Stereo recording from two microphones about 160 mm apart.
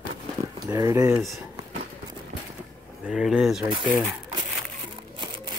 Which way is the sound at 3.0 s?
5° right (ahead or behind).